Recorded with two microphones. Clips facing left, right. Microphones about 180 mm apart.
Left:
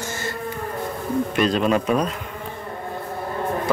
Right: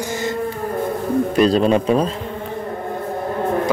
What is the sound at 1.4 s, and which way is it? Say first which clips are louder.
Speech: right 5 dB; 35° right (ahead or behind).